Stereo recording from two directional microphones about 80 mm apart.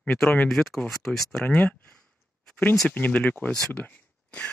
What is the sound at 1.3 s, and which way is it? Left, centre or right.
Speech, centre.